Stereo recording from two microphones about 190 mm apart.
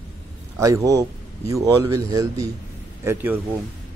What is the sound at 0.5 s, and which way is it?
A man's voice, 15° right (ahead or behind).